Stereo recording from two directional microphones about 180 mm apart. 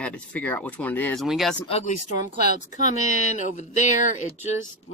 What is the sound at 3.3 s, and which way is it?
Speech, 45° left (ahead or behind).